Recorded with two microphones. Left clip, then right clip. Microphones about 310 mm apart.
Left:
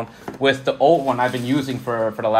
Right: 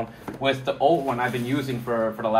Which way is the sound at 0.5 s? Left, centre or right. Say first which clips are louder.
Left 5 dB; left.